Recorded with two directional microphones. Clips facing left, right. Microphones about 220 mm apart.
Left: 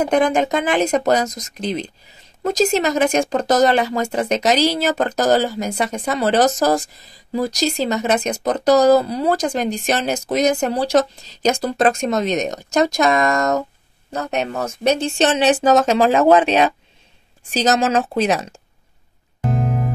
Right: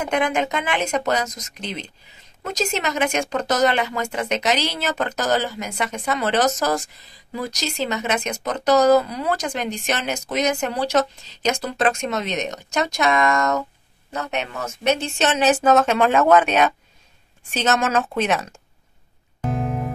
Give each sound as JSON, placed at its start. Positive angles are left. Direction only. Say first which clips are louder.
{"t": 0.0, "sound": "speech", "louder": "left 5 dB", "side_deg": 35}
{"t": 19.4, "sound": "music", "louder": "left 3 dB", "side_deg": 0}